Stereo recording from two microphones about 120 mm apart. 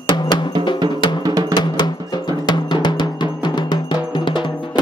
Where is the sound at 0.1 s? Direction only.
40° left (ahead or behind).